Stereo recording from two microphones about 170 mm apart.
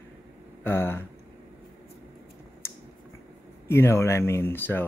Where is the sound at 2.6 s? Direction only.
15° left (ahead or behind).